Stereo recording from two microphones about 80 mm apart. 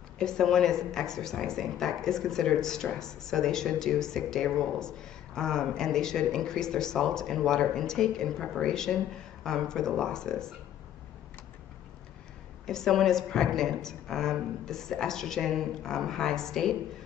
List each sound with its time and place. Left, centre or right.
0.2 s a woman's voice: centre
12.6 s a woman's voice: centre